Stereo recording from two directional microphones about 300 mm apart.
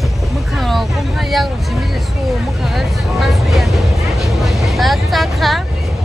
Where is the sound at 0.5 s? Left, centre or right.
Centre.